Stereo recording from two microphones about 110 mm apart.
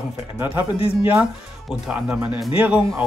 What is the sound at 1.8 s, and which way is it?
Speech, 10° right (ahead or behind).